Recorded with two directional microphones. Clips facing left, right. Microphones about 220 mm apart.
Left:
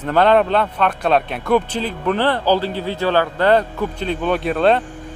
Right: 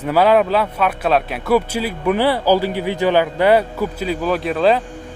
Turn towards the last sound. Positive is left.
turn(degrees=0)  # may be behind; listen again after turning